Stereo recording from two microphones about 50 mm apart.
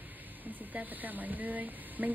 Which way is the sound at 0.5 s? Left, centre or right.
Right.